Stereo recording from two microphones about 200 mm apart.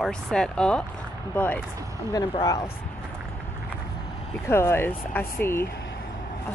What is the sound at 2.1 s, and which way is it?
Speech, 20° left (ahead or behind).